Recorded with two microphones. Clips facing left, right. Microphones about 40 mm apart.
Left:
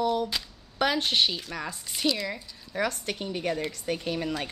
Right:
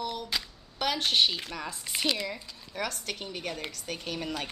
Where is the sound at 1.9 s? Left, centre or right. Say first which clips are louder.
Left 2 dB; right.